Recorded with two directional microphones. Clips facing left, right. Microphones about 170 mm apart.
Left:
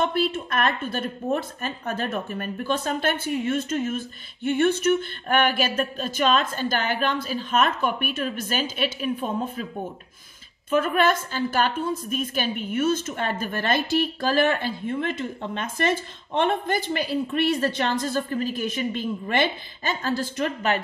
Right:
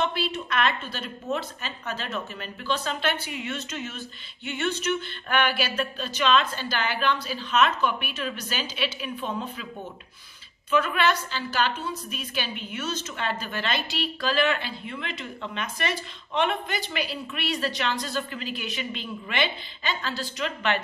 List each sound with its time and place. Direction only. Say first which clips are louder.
0.0 s a woman's voice: left 4 dB; 50° left (ahead or behind)
10.7 s a woman's voice: left 3 dB; 45° left (ahead or behind)
16.6 s a woman's voice: left 5 dB; 50° left (ahead or behind)